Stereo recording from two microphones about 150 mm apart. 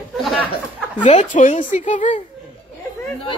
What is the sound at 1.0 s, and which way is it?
Speech, 55° left (ahead or behind).